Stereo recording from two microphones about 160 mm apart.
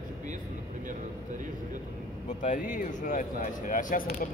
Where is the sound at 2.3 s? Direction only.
50° left (ahead or behind).